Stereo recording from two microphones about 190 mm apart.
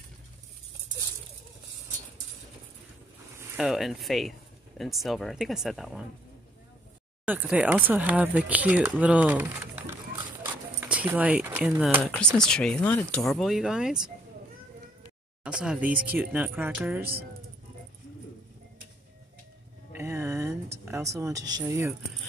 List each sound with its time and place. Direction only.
3.3 s speech: 5° right (ahead or behind)
7.2 s speech: 10° right (ahead or behind)
15.4 s speech: 5° right (ahead or behind)
19.9 s music: 15° right (ahead or behind)
20.8 s speech: 15° right (ahead or behind)